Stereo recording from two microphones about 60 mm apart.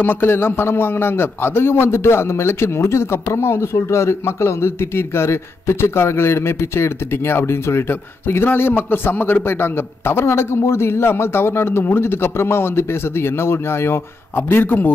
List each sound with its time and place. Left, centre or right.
0.0 s a man's voice: left